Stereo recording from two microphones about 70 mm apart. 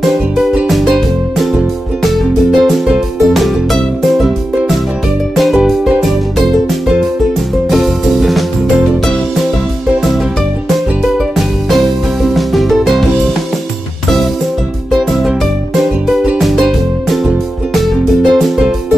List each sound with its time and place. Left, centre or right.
0.7 s music: centre
5.3 s music: centre
7.7 s music: centre
11.3 s music: centre
14.9 s music: centre